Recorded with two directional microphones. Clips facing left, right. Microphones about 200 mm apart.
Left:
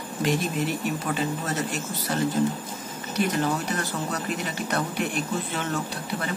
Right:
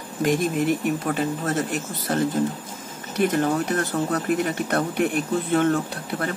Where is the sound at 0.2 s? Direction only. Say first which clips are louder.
Right 4 dB; 50° right (ahead or behind).